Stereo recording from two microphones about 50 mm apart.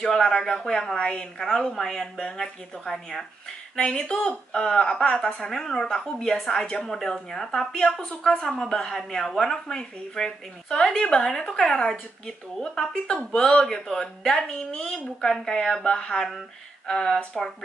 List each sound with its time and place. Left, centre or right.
0.0 s a woman's voice: centre